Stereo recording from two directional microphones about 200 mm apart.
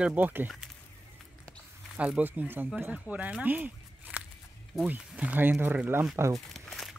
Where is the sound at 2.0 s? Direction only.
5° right (ahead or behind).